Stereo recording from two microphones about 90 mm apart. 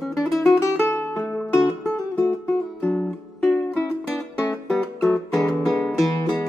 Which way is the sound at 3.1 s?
5° left (ahead or behind).